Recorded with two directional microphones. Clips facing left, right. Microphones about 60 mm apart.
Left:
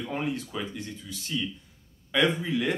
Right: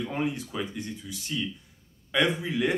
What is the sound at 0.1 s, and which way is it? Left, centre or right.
Speech, centre.